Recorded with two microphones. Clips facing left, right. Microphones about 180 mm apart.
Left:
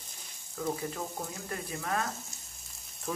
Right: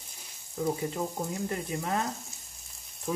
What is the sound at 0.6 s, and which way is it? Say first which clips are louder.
Speech: right 4 dB; 20° right (ahead or behind).